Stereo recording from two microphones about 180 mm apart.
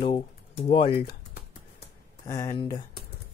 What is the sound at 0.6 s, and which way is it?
Speech, 30° left (ahead or behind).